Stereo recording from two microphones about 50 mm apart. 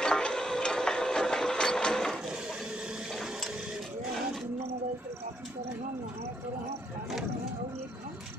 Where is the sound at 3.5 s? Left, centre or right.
Centre.